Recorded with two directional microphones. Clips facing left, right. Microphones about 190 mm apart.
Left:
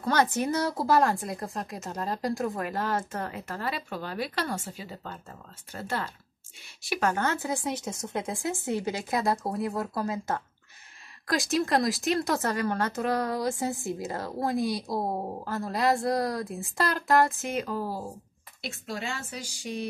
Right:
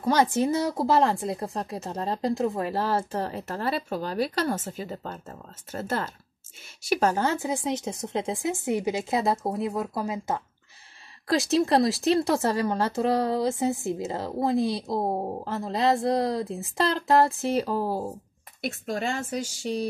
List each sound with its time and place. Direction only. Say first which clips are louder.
0.0 s speech: right 3 dB; 25° right (ahead or behind); by 6.1 s 45° right (ahead or behind)
6.9 s speech: right 4 dB; 35° right (ahead or behind); by 19.4 s 50° right (ahead or behind)